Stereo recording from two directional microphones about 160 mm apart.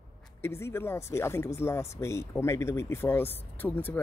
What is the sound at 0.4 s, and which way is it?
Speech, 15° left (ahead or behind).